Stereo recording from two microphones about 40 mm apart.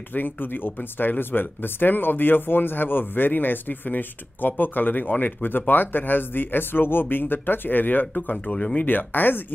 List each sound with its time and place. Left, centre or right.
0.1 s speech: left